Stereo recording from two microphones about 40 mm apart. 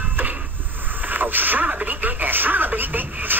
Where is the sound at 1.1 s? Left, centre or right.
Right.